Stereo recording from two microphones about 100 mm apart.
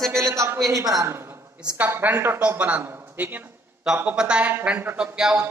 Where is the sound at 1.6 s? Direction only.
15° right (ahead or behind).